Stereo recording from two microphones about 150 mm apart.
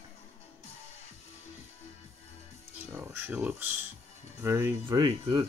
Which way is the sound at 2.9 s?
15° right (ahead or behind).